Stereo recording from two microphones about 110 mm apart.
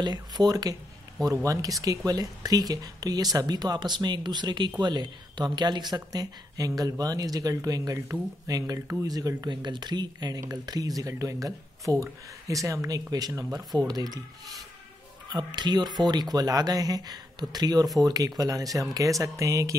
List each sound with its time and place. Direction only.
0.0 s speech: 40° right (ahead or behind)
15.2 s speech: 40° right (ahead or behind)